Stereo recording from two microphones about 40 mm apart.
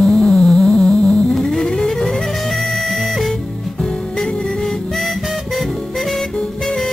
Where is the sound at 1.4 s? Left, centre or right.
Centre.